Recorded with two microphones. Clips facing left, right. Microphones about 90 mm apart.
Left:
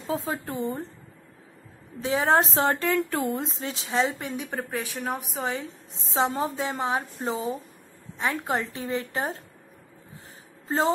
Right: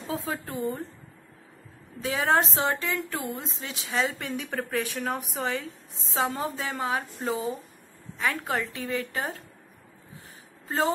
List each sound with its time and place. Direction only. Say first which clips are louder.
0.0 s a woman's voice: left 3 dB; 25° left (ahead or behind)
2.0 s a woman's voice: left 2 dB; 25° left (ahead or behind)
4.2 s a woman's voice: even; 20° left (ahead or behind)